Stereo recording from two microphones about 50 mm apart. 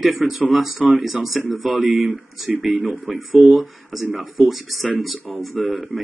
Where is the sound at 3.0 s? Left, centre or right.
Right.